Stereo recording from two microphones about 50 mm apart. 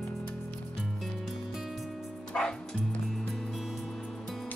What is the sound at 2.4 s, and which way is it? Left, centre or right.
Music, centre.